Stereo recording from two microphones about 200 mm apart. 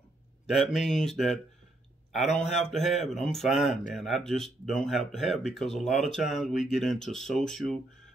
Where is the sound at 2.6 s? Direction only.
Centre (ahead or behind).